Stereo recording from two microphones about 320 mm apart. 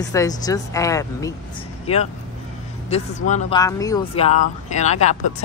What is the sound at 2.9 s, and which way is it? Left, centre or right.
Speech, left.